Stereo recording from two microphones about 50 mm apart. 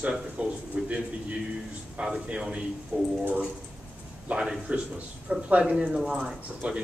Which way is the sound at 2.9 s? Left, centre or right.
Right.